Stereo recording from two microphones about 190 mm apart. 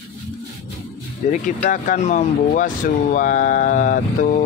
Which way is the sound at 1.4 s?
45° left (ahead or behind).